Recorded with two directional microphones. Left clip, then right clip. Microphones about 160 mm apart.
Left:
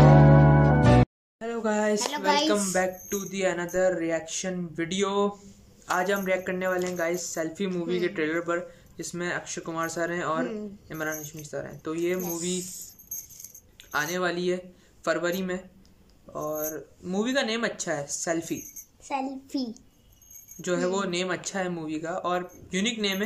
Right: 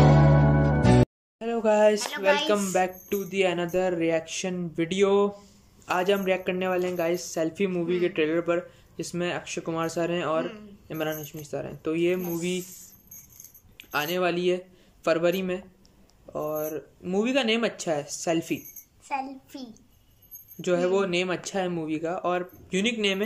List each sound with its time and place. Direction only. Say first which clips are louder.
0.1 s music: left 3 dB; centre (ahead or behind)
1.4 s speech: right 6 dB; 5° right (ahead or behind)
2.0 s speech: right 1 dB; 30° left (ahead or behind)
2.7 s speech: right 1 dB; 10° right (ahead or behind)
12.2 s a child's voice: right 1 dB; 30° left (ahead or behind)
13.7 s speech: right 1 dB; 10° right (ahead or behind)
19.0 s a child's voice: even; 25° left (ahead or behind)
20.6 s speech: right 3 dB; 10° right (ahead or behind)